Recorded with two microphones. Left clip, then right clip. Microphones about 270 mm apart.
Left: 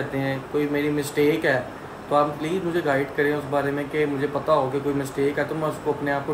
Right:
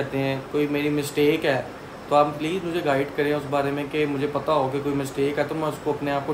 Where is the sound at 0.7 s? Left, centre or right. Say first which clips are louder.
Even; centre.